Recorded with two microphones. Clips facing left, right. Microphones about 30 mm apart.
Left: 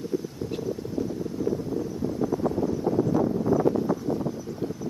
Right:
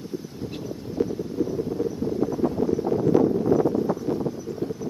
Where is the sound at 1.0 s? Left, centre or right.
Right.